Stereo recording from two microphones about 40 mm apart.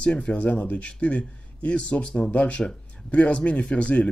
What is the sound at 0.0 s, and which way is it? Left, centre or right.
A man's voice, left.